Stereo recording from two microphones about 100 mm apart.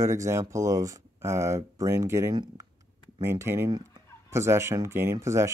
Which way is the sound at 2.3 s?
50° right (ahead or behind).